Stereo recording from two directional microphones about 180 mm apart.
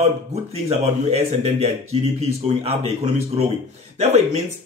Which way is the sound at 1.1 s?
35° right (ahead or behind).